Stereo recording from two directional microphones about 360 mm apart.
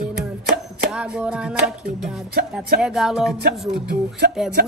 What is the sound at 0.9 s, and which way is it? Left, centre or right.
Music, centre.